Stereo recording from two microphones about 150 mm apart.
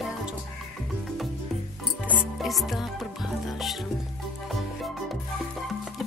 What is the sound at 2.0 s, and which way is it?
Music, 10° right (ahead or behind).